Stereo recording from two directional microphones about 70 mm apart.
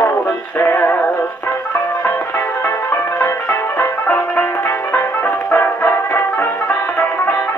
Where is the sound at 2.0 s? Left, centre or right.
Left.